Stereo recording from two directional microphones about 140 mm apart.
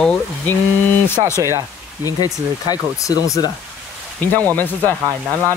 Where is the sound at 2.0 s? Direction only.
25° left (ahead or behind).